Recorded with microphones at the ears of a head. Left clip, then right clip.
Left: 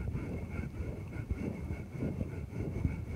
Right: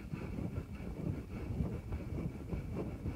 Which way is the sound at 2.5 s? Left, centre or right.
Left.